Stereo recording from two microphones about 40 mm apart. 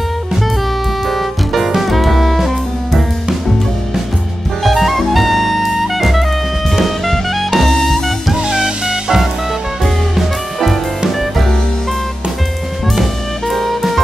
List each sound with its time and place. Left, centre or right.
1.0 s music: centre
4.6 s music: centre
6.7 s jazz: centre
8.4 s music: centre
9.8 s music: centre
12.9 s drum kit: centre